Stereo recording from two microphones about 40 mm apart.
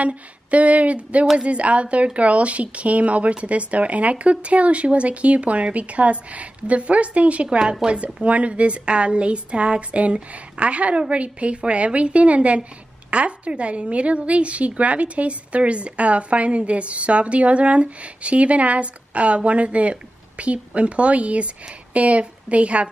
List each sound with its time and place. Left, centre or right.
0.0 s a woman's voice: right
7.4 s a woman's voice: right